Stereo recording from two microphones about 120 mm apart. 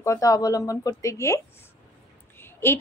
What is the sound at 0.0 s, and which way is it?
A woman's voice, 25° left (ahead or behind).